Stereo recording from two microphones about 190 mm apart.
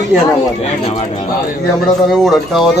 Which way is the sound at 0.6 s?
30° left (ahead or behind).